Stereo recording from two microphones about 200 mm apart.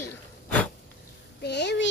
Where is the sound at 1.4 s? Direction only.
60° left (ahead or behind).